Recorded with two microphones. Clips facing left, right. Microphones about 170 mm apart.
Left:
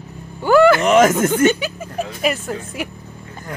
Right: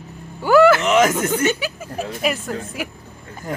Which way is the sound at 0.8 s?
45° left (ahead or behind).